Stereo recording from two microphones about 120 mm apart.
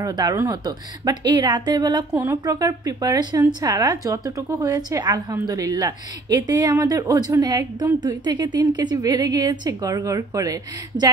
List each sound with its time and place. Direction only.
0.0 s speech: 30° right (ahead or behind)
2.1 s speech: 20° right (ahead or behind)